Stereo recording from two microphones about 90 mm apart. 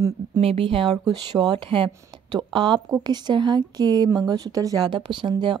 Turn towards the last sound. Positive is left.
turn(degrees=-60)  # may be behind; listen again after turning